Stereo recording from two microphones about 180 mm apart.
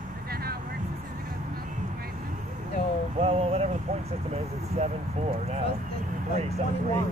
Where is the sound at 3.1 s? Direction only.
35° right (ahead or behind).